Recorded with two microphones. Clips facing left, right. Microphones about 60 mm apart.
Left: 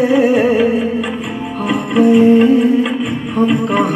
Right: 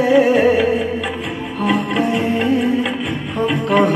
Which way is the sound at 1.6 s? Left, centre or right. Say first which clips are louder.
Left 5 dB; left.